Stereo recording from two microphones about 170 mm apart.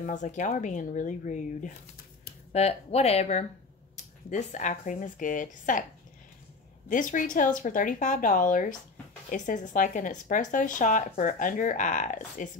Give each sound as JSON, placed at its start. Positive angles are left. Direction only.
{"t": 0.0, "sound": "speech", "side_deg": 45}
{"t": 6.9, "sound": "speech", "side_deg": 50}